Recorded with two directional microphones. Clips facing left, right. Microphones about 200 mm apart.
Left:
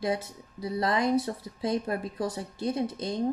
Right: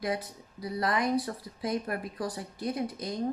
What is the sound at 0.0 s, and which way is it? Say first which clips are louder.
Speech: left 3 dB; 25° left (ahead or behind).